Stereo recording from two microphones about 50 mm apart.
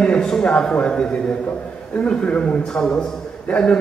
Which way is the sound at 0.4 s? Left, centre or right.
Centre.